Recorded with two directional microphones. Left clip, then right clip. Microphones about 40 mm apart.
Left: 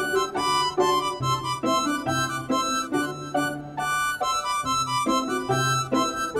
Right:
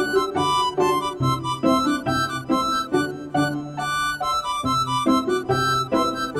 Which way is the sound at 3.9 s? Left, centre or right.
Right.